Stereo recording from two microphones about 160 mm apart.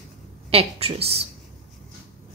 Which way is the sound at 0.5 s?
40° right (ahead or behind).